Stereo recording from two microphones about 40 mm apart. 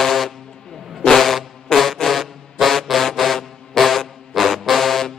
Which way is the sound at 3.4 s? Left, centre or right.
Centre.